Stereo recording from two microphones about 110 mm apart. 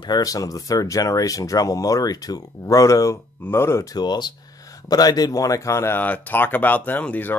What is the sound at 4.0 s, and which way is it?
Speech, 40° left (ahead or behind).